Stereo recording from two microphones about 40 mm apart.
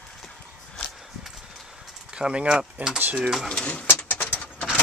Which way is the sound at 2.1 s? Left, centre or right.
Right.